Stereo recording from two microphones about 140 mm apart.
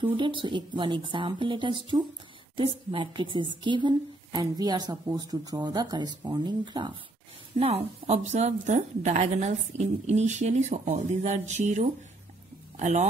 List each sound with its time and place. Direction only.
0.0 s a woman's voice: 35° right (ahead or behind)
7.5 s a woman's voice: 45° right (ahead or behind)